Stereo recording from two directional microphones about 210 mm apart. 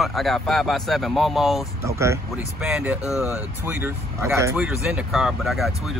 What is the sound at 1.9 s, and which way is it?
Speech, 15° right (ahead or behind).